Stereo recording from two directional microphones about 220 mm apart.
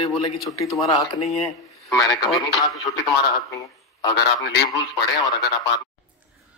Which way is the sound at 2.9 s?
45° left (ahead or behind).